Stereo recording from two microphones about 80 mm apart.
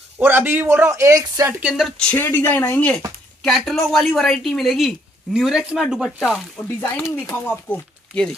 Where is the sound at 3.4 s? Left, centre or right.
Centre.